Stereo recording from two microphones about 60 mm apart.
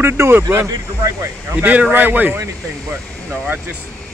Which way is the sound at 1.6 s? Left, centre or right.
Right.